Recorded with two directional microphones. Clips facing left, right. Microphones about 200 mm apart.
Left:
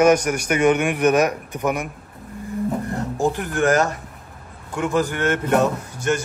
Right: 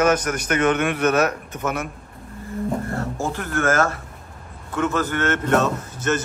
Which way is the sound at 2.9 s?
15° left (ahead or behind).